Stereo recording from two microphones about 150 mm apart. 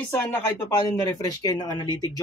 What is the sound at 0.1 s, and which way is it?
Speech, 15° left (ahead or behind).